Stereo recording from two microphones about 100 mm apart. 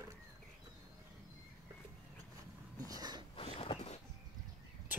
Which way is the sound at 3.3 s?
75° left (ahead or behind).